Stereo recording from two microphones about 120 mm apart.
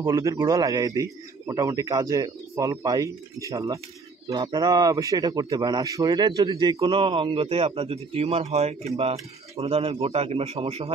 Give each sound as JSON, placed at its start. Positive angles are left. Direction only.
{"t": 0.0, "sound": "a man's voice", "side_deg": -30}